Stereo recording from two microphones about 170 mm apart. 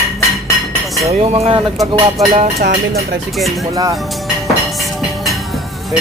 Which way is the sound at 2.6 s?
70° right (ahead or behind).